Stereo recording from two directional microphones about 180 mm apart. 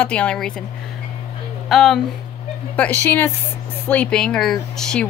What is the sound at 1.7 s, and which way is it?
A woman's voice, centre (ahead or behind).